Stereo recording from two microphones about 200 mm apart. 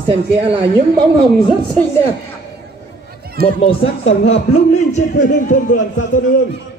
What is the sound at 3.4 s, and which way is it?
Speech, 50° right (ahead or behind).